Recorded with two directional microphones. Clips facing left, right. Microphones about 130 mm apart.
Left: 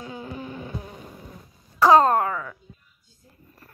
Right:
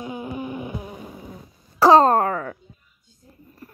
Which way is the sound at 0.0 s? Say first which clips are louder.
Right 5 dB; 15° right (ahead or behind).